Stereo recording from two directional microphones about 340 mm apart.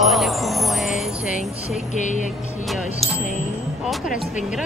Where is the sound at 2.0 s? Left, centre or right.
Left.